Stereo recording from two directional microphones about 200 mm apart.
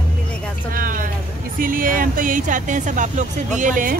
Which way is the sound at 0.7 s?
45° right (ahead or behind).